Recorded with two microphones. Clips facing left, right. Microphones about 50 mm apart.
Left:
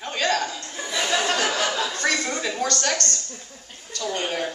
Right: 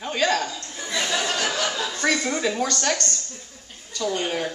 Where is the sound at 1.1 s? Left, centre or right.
Left.